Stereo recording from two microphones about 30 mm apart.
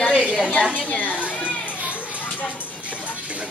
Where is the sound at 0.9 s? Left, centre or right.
Left.